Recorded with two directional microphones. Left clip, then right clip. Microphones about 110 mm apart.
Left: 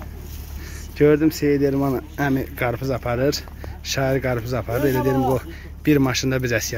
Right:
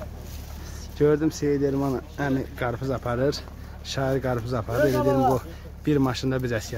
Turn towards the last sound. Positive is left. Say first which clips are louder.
# left 5 dB
turn(degrees=5)  # may be behind; listen again after turning